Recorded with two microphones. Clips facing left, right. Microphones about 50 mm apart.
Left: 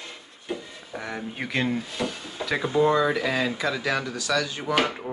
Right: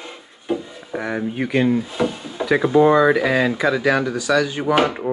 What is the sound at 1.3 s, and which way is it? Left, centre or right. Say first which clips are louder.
Speech: right 8 dB; centre.